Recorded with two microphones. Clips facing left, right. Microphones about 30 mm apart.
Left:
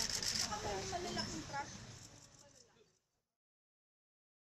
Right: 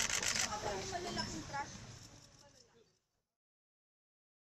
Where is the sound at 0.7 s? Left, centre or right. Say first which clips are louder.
Right 1 dB; centre.